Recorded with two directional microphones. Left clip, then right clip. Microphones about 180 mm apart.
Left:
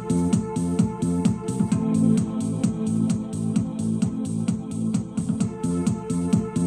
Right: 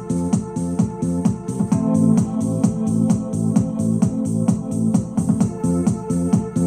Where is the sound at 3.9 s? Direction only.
35° left (ahead or behind).